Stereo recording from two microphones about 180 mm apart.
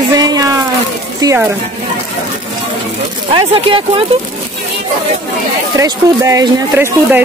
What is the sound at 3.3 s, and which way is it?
Speech, 30° right (ahead or behind).